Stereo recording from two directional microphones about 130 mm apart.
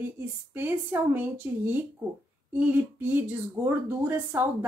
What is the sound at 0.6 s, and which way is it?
Speech, 15° right (ahead or behind).